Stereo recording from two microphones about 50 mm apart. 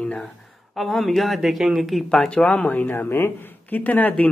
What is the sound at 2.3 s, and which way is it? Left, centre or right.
Speech, left.